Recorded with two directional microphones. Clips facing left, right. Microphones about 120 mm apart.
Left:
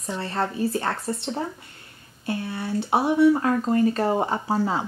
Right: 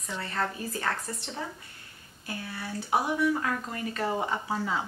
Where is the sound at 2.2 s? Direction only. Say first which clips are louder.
Left 9 dB; 25° left (ahead or behind).